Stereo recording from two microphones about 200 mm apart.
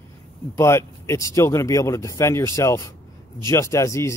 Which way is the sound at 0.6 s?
15° left (ahead or behind).